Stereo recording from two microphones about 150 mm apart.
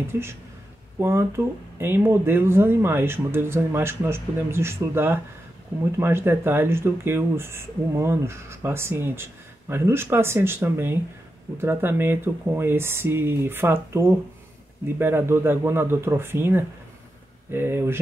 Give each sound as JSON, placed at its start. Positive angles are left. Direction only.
{"t": 0.1, "sound": "speech", "side_deg": -15}